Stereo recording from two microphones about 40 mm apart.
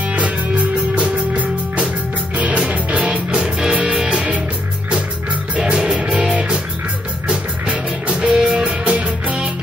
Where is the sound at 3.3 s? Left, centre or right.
Centre.